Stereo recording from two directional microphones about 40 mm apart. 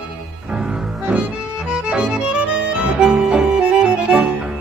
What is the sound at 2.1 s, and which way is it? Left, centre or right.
Music, centre.